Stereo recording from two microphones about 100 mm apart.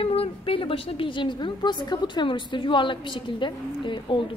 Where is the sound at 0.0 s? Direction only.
70° left (ahead or behind).